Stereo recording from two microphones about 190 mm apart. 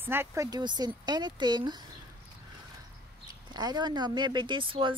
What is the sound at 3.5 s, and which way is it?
Speech, 20° right (ahead or behind).